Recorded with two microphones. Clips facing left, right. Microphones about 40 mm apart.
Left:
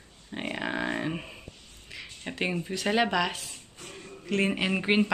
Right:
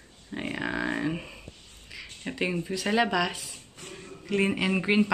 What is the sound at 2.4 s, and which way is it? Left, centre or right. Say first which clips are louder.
Speech: right 1 dB; centre.